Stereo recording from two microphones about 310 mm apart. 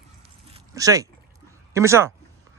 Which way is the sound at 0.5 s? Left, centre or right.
Centre.